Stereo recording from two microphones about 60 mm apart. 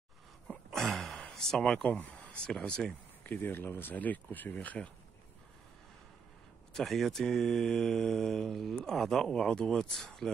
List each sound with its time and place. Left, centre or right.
0.7 s a sound: centre
1.9 s speech: left
2.4 s speech: centre
3.3 s speech: left
6.7 s speech: centre